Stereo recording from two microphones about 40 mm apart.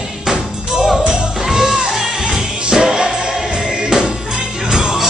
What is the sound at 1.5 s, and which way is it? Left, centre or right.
Music, centre.